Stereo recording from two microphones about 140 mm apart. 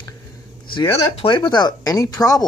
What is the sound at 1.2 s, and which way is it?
Speech, 35° left (ahead or behind).